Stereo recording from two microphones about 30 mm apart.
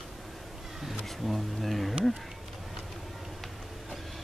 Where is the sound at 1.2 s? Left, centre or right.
Centre.